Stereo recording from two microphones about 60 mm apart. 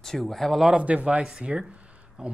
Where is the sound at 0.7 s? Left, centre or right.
Right.